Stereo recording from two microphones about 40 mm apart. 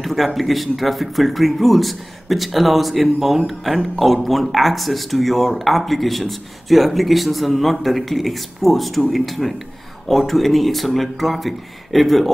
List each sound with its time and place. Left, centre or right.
0.0 s speech: centre